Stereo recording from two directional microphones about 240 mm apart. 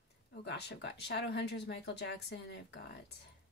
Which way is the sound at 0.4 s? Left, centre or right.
Left.